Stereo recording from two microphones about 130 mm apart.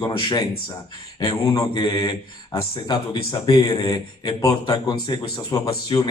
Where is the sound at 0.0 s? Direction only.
35° left (ahead or behind).